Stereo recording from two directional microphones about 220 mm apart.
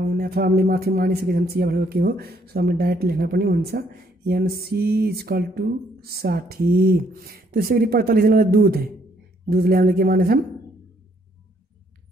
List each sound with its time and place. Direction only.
0.1 s speech: 45° right (ahead or behind)